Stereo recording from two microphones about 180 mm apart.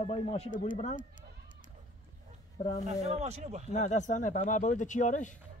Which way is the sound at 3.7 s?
40° left (ahead or behind).